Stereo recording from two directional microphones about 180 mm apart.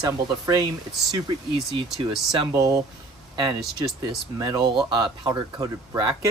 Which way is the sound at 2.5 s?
20° right (ahead or behind).